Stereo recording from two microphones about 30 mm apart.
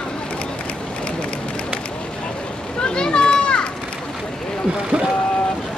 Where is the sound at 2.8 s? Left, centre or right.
Left.